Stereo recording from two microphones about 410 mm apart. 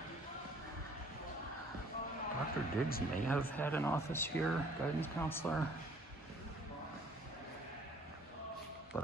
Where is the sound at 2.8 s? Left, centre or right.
Left.